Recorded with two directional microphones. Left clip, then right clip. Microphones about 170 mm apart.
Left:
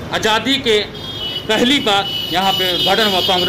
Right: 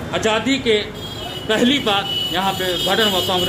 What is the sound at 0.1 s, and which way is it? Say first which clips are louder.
A man's voice: left 3 dB; 30° left (ahead or behind).